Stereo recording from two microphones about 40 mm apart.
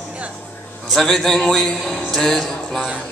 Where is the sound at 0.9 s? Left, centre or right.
Centre.